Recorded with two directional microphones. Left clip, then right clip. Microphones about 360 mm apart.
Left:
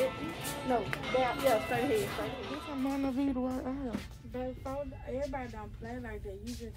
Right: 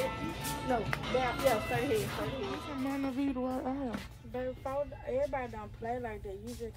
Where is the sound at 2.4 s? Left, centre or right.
Centre.